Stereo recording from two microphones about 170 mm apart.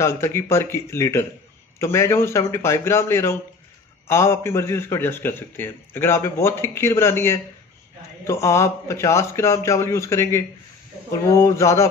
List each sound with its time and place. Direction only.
0.0 s a man's voice: 15° left (ahead or behind)